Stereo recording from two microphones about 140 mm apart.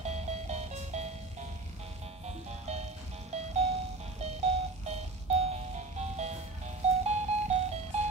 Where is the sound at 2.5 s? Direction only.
50° right (ahead or behind).